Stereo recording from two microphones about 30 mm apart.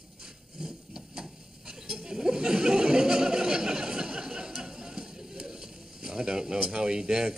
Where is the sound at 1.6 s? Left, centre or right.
Right.